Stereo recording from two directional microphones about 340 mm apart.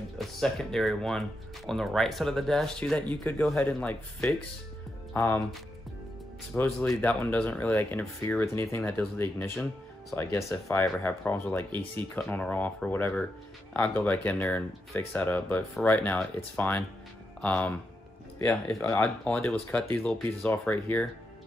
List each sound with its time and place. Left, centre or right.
0.2 s speech: centre